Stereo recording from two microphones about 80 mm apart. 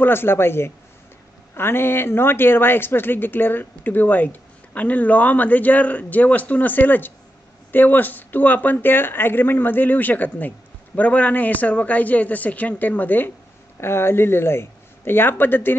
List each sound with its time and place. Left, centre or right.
0.0 s speech: left